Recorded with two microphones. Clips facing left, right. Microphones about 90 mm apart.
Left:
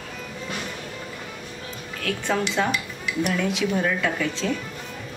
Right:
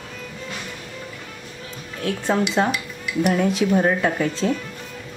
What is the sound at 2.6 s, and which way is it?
Speech, 35° right (ahead or behind).